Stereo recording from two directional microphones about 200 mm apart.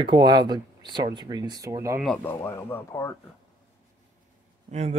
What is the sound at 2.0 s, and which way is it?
Speech, 5° left (ahead or behind).